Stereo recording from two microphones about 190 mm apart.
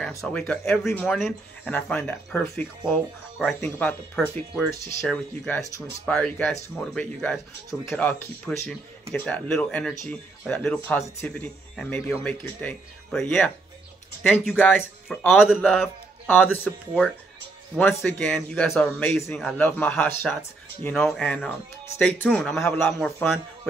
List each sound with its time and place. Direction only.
0.1 s a man's voice: 15° left (ahead or behind)